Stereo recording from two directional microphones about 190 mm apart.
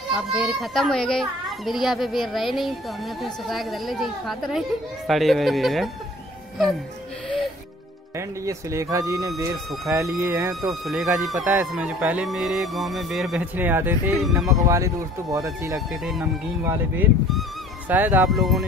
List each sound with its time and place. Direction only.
0.1 s speech: centre (ahead or behind)
8.2 s speech: 15° right (ahead or behind)
10.7 s speech: centre (ahead or behind)